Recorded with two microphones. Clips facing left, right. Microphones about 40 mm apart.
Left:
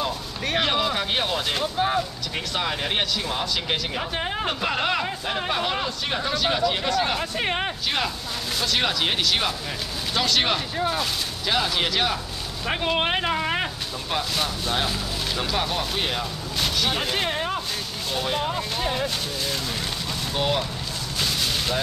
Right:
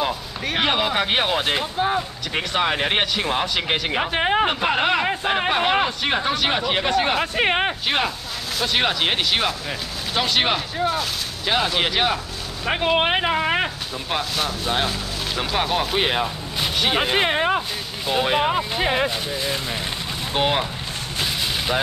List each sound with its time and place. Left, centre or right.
0.6 s speech: right
10.8 s speech: centre
11.4 s speech: centre
14.1 s speech: centre
16.0 s speech: right
16.7 s a sound: right
17.0 s speech: right
19.0 s speech: right
20.3 s speech: right
21.2 s vehicle: right